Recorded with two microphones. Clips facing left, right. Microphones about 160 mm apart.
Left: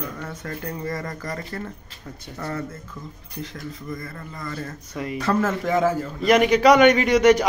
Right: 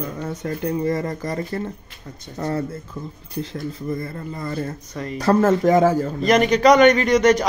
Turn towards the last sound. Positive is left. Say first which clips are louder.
# even
turn(degrees=10)  # may be behind; listen again after turning